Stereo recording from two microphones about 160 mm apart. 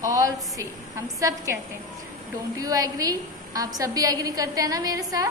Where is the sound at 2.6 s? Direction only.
20° right (ahead or behind).